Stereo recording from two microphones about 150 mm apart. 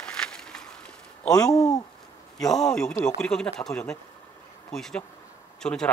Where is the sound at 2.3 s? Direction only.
5° left (ahead or behind).